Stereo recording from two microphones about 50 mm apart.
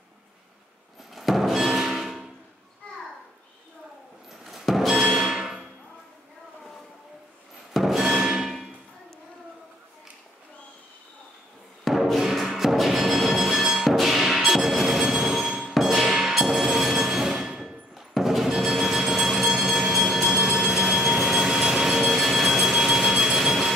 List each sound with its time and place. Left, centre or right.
1.1 s music: centre
4.3 s music: centre
5.4 s music: centre
7.7 s music: centre
11.8 s music: centre
19.7 s train: centre